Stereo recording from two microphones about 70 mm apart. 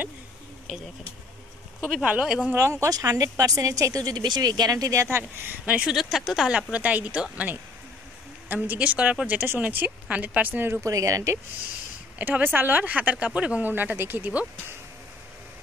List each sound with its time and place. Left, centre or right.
1.9 s speech: centre
2.5 s speech: right
5.1 s speech: right
5.7 s speech: centre
5.9 s speech: centre
6.7 s speech: right
10.8 s speech: right
12.2 s speech: right